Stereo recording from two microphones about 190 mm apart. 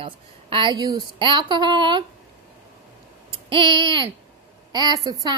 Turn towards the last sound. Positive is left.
turn(degrees=-20)  # may be behind; listen again after turning